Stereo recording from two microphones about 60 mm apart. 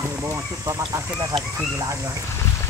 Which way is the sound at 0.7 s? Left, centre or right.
Right.